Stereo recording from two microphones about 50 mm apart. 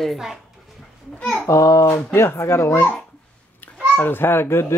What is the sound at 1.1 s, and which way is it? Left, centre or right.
Speech, centre.